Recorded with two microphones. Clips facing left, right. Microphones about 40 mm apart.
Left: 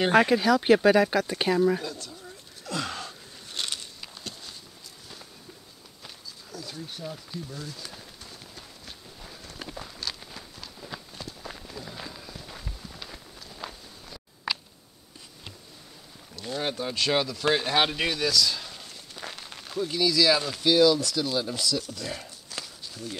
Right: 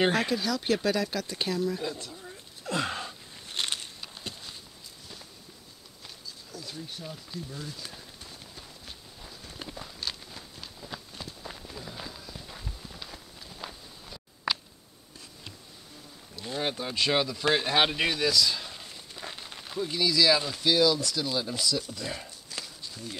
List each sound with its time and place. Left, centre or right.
0.1 s speech: centre
1.8 s speech: centre
2.6 s gasp: right
3.4 s a sound: right
4.2 s a sound: centre
6.5 s speech: centre
7.5 s horse: centre
9.2 s a sound: centre
9.7 s walk: centre
11.5 s run: centre
12.4 s walk: centre
16.3 s speech: centre
19.1 s a sound: centre
19.6 s speech: centre